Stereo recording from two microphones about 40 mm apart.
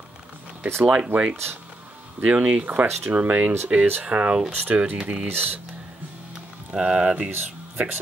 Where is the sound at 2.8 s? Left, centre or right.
Right.